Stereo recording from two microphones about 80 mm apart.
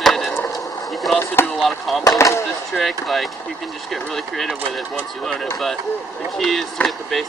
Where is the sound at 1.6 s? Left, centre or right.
Centre.